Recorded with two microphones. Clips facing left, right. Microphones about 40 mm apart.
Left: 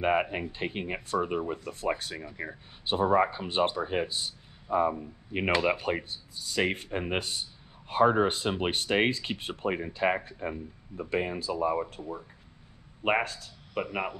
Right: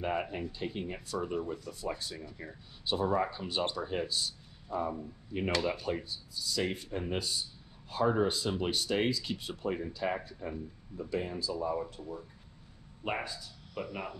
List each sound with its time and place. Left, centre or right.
0.0 s speech: left
13.2 s speech: left